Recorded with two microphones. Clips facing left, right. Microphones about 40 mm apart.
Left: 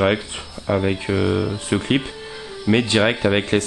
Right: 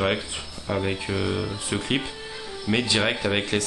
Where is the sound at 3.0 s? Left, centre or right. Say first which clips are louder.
Left 6 dB; centre.